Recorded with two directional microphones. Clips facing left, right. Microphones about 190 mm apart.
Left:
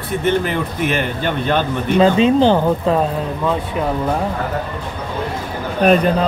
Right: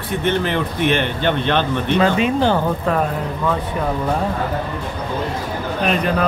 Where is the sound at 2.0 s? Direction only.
25° left (ahead or behind).